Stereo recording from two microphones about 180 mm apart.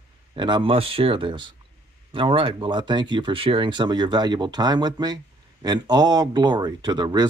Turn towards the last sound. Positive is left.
turn(degrees=-25)  # may be behind; listen again after turning